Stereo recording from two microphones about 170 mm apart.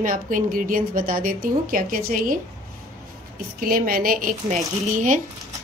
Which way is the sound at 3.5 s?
60° right (ahead or behind).